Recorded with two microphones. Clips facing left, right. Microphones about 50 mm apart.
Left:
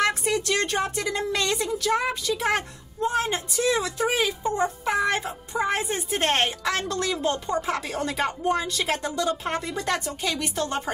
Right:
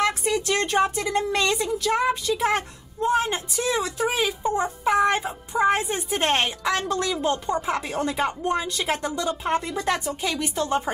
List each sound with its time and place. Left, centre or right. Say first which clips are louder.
0.0 s a sound: right 1 dB; centre
0.5 s speech: right 3 dB; right
1.6 s a woman's voice: right 1 dB; centre